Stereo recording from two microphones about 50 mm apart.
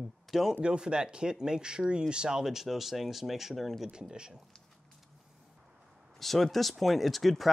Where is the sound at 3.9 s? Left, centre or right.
Centre.